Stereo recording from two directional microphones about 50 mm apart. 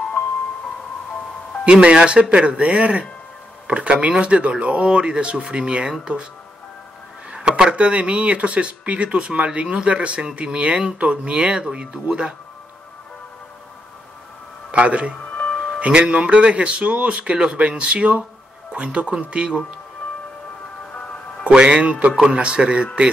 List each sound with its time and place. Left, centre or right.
1.6 s speech: right
7.2 s speech: centre
14.7 s speech: right
21.5 s speech: centre